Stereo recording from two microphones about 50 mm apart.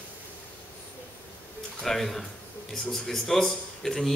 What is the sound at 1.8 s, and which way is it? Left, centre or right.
Speech, centre.